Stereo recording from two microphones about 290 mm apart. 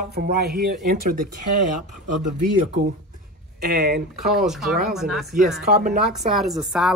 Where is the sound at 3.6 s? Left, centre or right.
Right.